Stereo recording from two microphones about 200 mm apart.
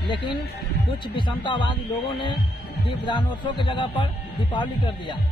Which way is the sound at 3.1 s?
25° left (ahead or behind).